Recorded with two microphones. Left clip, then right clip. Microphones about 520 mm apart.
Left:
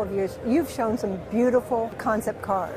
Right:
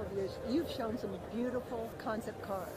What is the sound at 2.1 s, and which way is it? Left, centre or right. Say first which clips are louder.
Speech: left 13 dB; left.